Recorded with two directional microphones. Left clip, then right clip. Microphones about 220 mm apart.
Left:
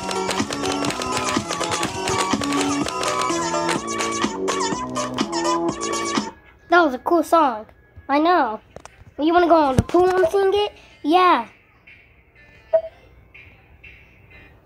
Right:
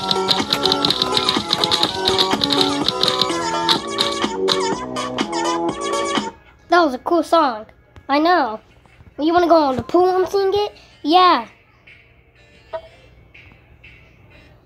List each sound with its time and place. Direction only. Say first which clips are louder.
0.0 s music: right 5 dB; 45° left (ahead or behind)
6.7 s a sound: right 1 dB; centre (ahead or behind)
7.1 s speech: right 1 dB; 5° left (ahead or behind)
8.1 s a child's voice: right 2 dB; 5° right (ahead or behind)